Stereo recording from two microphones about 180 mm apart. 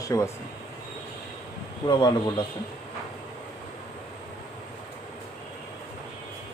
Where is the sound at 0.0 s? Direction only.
15° left (ahead or behind).